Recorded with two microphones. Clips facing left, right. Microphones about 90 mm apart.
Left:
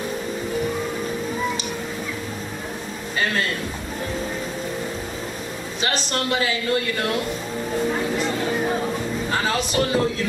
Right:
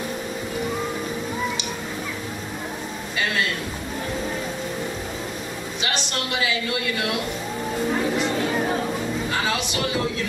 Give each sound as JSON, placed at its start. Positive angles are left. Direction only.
{"t": 5.8, "sound": "speech", "side_deg": 40}
{"t": 9.3, "sound": "music", "side_deg": 40}